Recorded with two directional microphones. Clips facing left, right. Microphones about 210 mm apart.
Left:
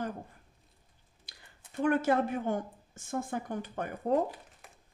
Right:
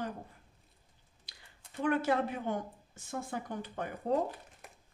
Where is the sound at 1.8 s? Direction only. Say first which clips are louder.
Left 3 dB; 50° left (ahead or behind).